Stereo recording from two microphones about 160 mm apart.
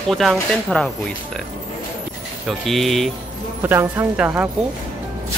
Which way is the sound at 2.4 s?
Centre (ahead or behind).